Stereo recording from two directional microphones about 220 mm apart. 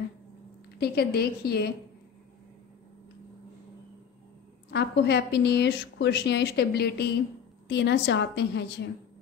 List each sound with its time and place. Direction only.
0.7 s a woman's voice: 45° left (ahead or behind)
4.6 s a woman's voice: 50° left (ahead or behind)